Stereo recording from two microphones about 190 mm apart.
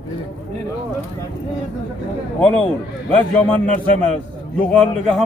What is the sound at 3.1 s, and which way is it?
A man's voice, 5° left (ahead or behind).